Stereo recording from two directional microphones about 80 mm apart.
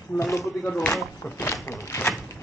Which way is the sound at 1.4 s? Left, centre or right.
Left.